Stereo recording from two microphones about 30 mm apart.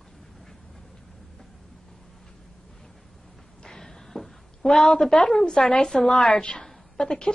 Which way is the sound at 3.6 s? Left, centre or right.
Centre.